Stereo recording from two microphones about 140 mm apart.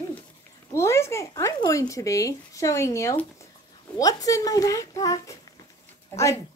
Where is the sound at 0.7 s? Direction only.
20° left (ahead or behind).